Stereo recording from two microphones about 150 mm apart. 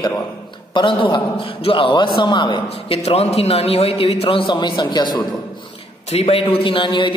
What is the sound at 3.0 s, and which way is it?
A man's voice, 45° left (ahead or behind).